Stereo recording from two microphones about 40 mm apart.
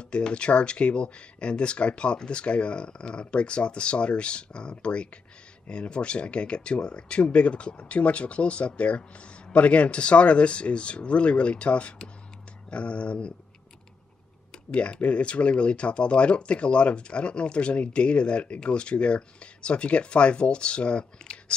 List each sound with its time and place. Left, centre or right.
0.0 s speech: left
12.6 s a sound: left
14.7 s speech: left